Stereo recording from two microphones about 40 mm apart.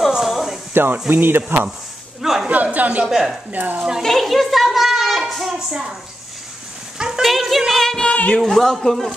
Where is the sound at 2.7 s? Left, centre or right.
Right.